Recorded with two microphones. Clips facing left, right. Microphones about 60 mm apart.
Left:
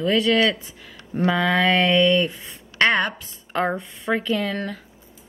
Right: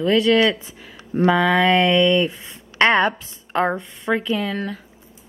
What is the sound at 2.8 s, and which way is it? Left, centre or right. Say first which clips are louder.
Speech: right 3 dB; centre.